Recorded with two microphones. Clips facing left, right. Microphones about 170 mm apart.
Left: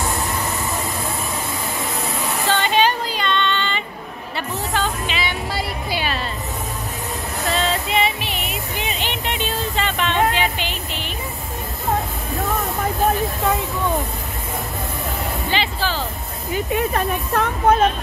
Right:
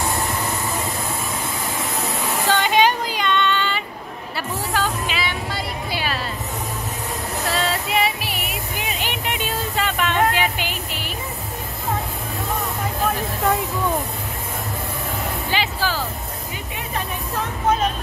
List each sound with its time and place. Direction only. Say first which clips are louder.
2.4 s music: right 1 dB; 10° right (ahead or behind)
7.5 s music: left 2 dB; 5° right (ahead or behind)
15.5 s vehicle: even; 10° right (ahead or behind)
16.7 s a sound: left 7 dB; 55° left (ahead or behind)